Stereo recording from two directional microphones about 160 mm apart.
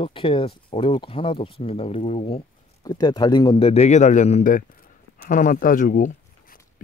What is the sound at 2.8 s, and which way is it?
Speech, 25° left (ahead or behind).